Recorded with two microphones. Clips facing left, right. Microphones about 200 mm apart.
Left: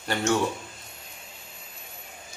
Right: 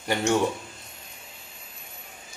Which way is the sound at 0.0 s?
15° right (ahead or behind).